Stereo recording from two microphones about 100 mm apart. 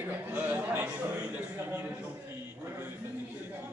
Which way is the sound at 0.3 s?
20° right (ahead or behind).